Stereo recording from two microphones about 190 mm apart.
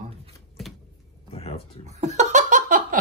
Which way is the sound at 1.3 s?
30° left (ahead or behind).